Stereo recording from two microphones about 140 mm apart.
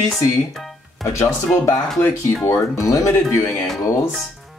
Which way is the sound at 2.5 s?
25° left (ahead or behind).